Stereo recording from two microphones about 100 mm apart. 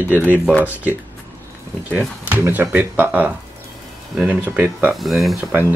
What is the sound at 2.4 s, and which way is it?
Speech, 20° right (ahead or behind).